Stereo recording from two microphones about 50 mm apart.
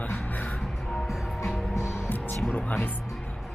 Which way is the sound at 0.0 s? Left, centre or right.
Left.